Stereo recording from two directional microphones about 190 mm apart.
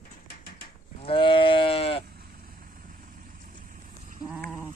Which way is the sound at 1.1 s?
25° left (ahead or behind).